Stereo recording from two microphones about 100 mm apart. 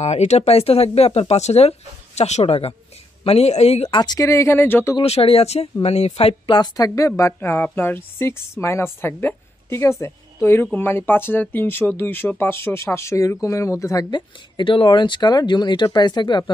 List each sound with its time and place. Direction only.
0.0 s speech: 90° left
3.9 s speech: 45° left (ahead or behind)
4.3 s a woman's voice: 30° left (ahead or behind)
5.0 s speech: 80° left
6.6 s speech: 35° left (ahead or behind)
7.3 s a woman's voice: 20° left (ahead or behind)
14.1 s speech: 60° left (ahead or behind)